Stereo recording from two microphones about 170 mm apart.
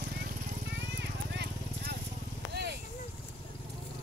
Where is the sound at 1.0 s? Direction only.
85° right.